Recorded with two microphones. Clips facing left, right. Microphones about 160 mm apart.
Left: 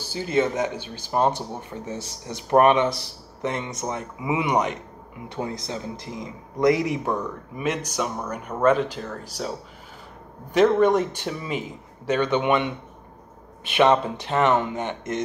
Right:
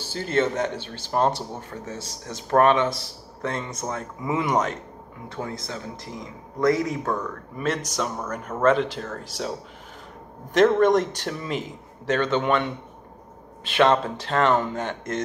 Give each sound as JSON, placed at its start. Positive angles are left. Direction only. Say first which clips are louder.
{"t": 0.0, "sound": "a man's voice", "louder": "left 1 dB", "side_deg": 10}
{"t": 10.5, "sound": "speech", "louder": "even", "side_deg": 5}